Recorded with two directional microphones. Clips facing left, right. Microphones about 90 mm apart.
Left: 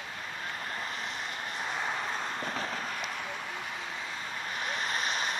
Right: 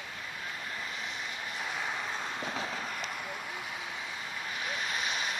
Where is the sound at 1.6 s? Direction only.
35° left (ahead or behind).